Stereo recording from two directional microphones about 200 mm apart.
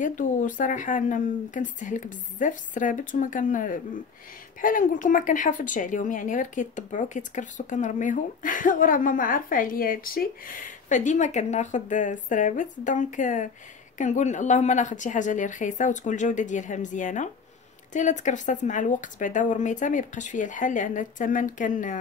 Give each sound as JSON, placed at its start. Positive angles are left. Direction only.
{"t": 0.0, "sound": "a woman's voice", "side_deg": 40}